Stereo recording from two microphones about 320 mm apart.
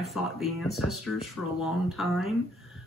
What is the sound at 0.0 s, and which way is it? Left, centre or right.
Speech, centre.